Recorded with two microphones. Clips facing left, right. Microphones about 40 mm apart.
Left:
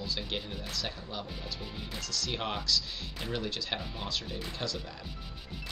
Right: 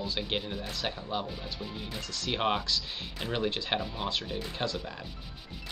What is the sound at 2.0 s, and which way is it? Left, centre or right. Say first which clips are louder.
Speech: right 5 dB; right.